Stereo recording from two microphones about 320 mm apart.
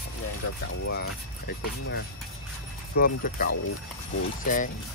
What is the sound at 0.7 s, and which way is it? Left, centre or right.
Speech, left.